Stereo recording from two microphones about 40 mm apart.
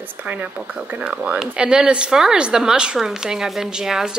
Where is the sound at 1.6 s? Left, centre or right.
Right.